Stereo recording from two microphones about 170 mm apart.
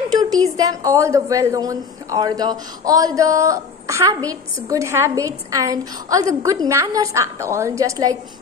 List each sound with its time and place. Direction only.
0.1 s a woman's voice: 20° right (ahead or behind)